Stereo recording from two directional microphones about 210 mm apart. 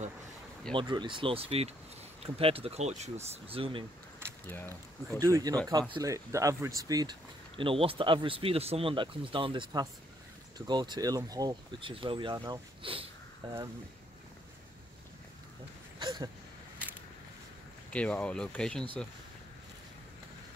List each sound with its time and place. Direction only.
0.7 s speech: 20° right (ahead or behind)
4.5 s speech: 10° left (ahead or behind)
5.2 s speech: 15° right (ahead or behind)
16.0 s a sound: 20° right (ahead or behind)
17.9 s speech: 5° left (ahead or behind)